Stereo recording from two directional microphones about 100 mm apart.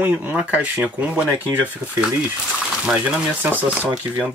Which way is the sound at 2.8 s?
10° right (ahead or behind).